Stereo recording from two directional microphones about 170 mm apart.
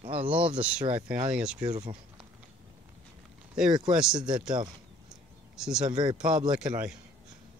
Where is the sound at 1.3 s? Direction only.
5° right (ahead or behind).